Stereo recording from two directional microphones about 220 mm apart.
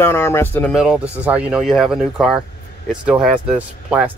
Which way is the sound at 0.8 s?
5° right (ahead or behind).